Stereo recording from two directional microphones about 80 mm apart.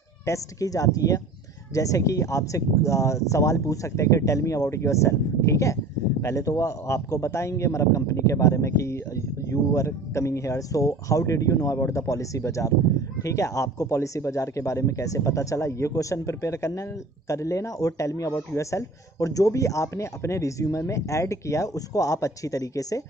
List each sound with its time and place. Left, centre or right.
0.2 s a man's voice: left